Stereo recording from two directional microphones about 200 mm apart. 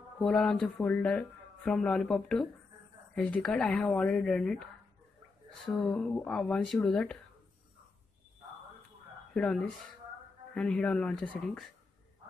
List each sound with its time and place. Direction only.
0.2 s speech: 5° left (ahead or behind)
9.3 s speech: 5° left (ahead or behind)